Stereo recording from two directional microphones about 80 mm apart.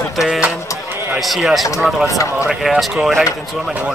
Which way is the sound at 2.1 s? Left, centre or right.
Left.